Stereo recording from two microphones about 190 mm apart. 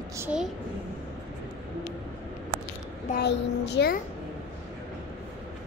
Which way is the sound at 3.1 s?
60° left (ahead or behind).